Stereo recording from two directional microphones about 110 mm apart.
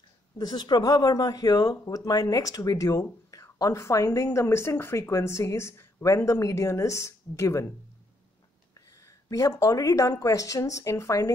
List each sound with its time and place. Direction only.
0.4 s speech: 40° left (ahead or behind)
8.7 s speech: 30° left (ahead or behind)